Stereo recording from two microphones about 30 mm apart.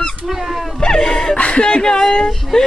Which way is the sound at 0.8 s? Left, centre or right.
Left.